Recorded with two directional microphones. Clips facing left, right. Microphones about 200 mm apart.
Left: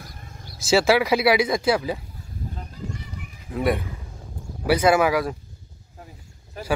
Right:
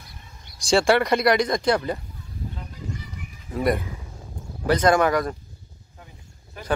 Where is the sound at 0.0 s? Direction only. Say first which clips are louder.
Left 5 dB; 50° left (ahead or behind).